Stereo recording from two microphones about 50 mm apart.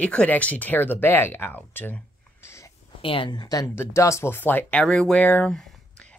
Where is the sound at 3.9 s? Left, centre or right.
Left.